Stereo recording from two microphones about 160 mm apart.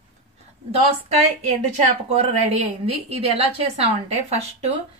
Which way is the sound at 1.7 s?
40° right (ahead or behind).